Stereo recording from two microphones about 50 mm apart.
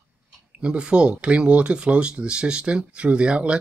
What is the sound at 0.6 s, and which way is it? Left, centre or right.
Speech, centre.